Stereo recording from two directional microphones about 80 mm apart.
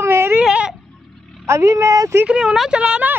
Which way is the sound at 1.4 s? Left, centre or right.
Right.